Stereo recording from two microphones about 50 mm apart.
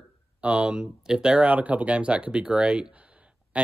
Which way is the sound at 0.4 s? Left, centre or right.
Right.